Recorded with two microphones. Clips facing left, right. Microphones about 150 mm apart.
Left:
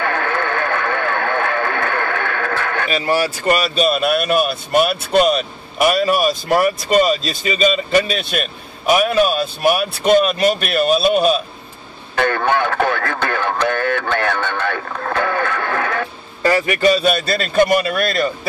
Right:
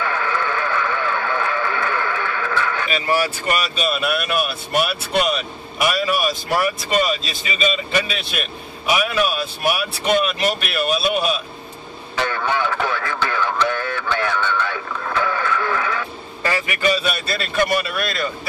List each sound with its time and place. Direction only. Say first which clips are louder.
0.0 s radio: left 3 dB; 55° left (ahead or behind)
2.9 s speech: left 3 dB; 40° left (ahead or behind)
12.2 s speech: left 5 dB; 55° left (ahead or behind)
16.4 s speech: left 6 dB; 40° left (ahead or behind)